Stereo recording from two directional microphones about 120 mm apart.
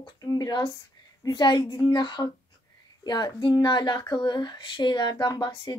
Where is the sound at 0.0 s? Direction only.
35° left (ahead or behind).